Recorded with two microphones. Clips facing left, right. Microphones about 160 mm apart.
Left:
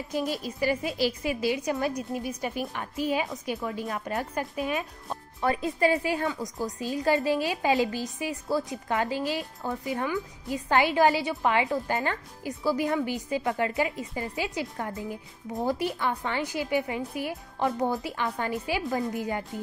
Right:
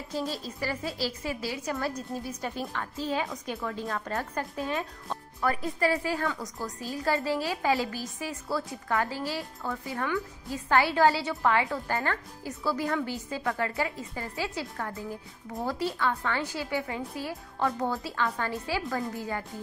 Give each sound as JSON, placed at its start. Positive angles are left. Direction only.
{"t": 0.1, "sound": "a woman's voice", "side_deg": 15}